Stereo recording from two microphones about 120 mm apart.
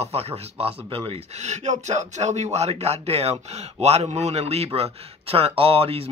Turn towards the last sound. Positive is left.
turn(degrees=-50)  # may be behind; listen again after turning